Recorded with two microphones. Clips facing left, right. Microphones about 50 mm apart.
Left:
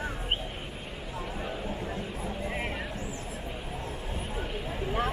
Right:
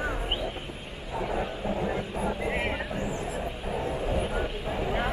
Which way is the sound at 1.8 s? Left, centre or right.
Right.